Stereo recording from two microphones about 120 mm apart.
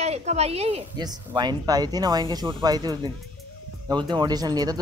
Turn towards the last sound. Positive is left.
turn(degrees=-35)  # may be behind; listen again after turning